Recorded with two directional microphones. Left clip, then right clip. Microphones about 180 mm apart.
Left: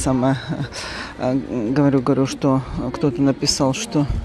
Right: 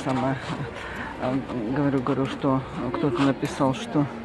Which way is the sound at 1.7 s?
40° left (ahead or behind).